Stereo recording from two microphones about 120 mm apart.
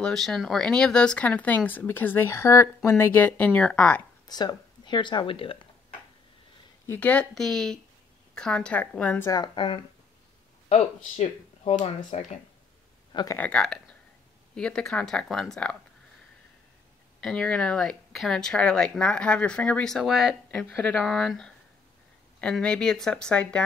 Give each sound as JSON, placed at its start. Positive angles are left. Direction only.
{"t": 0.0, "sound": "speech", "side_deg": 5}
{"t": 4.3, "sound": "speech", "side_deg": 35}
{"t": 6.9, "sound": "speech", "side_deg": 10}
{"t": 9.3, "sound": "speech", "side_deg": 40}
{"t": 10.7, "sound": "speech", "side_deg": 65}
{"t": 13.4, "sound": "speech", "side_deg": 10}
{"t": 17.2, "sound": "speech", "side_deg": 5}